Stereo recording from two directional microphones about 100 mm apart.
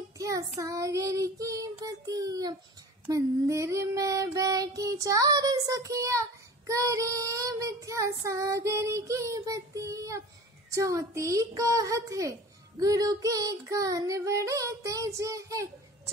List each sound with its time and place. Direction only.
0.2 s child singing: 35° right (ahead or behind)